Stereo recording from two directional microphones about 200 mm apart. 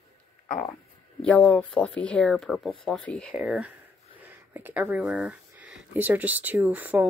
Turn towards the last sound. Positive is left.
turn(degrees=-10)  # may be behind; listen again after turning